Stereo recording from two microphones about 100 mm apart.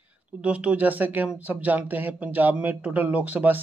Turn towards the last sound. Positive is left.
turn(degrees=-15)  # may be behind; listen again after turning